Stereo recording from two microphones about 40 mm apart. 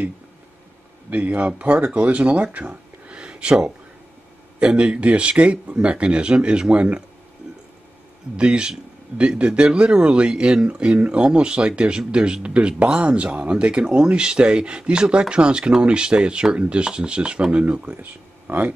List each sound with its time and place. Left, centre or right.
1.1 s a man's voice: right
4.6 s speech: right
8.4 s speech: right
17.6 s a man's voice: right